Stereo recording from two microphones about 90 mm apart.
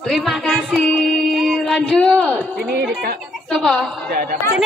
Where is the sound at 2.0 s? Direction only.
15° left (ahead or behind).